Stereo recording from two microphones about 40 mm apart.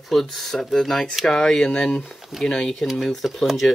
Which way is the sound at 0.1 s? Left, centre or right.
Centre.